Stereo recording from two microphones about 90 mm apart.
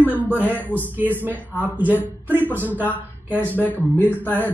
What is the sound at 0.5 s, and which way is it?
Speech, 20° left (ahead or behind).